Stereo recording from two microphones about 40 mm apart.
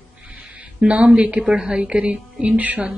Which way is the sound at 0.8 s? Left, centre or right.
Right.